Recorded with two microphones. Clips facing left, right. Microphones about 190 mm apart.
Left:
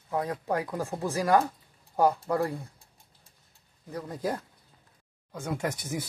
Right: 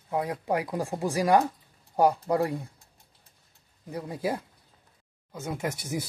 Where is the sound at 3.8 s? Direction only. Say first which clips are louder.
Right 1 dB; 10° right (ahead or behind).